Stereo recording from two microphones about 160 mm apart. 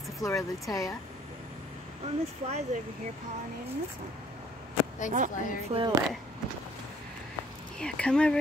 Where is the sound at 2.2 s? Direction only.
40° right (ahead or behind).